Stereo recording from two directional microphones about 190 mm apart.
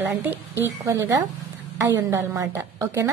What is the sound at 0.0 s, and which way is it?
Speech, 10° right (ahead or behind).